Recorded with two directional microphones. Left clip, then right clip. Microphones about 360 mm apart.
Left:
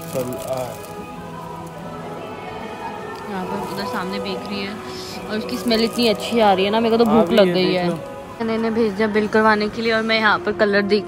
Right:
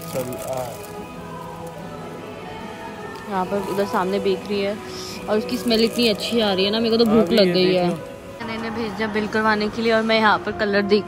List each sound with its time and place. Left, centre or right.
3.8 s speech: centre
4.1 s a man's voice: centre
6.8 s speech: centre
7.1 s a man's voice: centre